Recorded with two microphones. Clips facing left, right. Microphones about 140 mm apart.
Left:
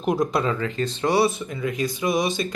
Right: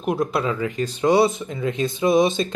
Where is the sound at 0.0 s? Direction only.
5° right (ahead or behind).